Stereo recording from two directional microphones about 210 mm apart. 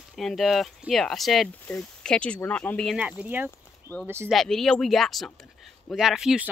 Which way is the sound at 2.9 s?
5° right (ahead or behind).